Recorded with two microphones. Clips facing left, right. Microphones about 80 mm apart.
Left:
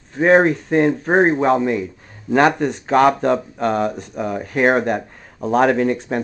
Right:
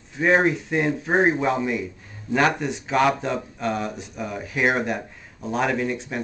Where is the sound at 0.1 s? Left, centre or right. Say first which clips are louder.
Left 6 dB; left.